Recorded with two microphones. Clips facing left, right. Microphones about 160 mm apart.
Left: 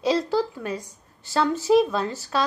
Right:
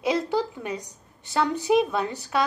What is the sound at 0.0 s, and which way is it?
A woman's voice, 20° right (ahead or behind).